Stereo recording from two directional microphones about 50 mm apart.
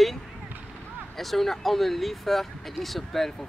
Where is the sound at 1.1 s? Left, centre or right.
Centre.